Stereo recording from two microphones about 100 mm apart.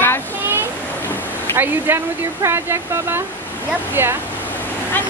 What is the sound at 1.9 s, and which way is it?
Speech, 20° right (ahead or behind).